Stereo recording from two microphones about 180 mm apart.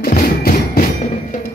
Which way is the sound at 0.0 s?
55° left (ahead or behind).